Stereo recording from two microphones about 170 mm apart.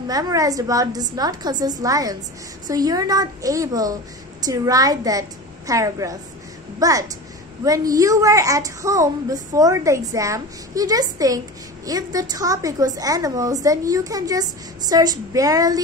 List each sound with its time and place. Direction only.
0.1 s a woman's voice: 20° right (ahead or behind)